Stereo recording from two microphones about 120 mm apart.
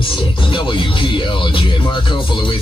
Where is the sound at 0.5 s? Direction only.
45° left (ahead or behind).